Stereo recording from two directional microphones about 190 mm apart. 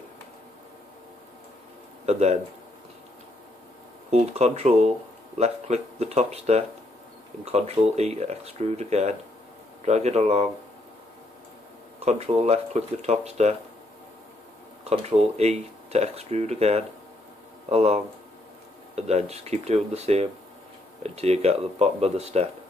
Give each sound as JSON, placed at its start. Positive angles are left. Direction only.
{"t": 2.0, "sound": "speech", "side_deg": -35}
{"t": 4.1, "sound": "speech", "side_deg": -35}
{"t": 12.0, "sound": "speech", "side_deg": -35}
{"t": 14.9, "sound": "speech", "side_deg": -35}